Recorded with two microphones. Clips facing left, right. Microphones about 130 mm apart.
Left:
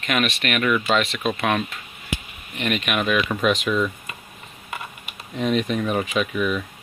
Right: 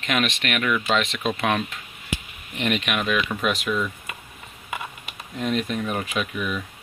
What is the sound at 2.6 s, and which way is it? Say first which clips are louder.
Speech: left 1 dB; 10° left (ahead or behind).